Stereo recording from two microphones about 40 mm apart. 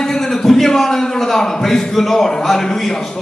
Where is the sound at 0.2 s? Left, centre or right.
Centre.